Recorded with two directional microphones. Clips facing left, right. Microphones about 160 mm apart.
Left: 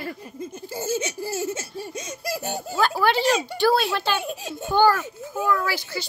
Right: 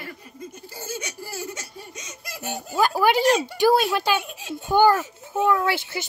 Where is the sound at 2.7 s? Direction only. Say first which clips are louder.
Right 2 dB; 15° right (ahead or behind).